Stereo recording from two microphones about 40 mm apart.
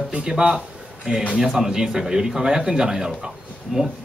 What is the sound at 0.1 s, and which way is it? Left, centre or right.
A man's voice, right.